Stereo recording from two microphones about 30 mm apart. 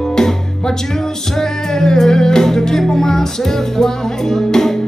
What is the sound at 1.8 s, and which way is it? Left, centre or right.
Music, centre.